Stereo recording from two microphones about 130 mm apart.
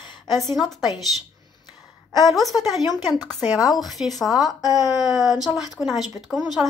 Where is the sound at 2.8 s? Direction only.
35° left (ahead or behind).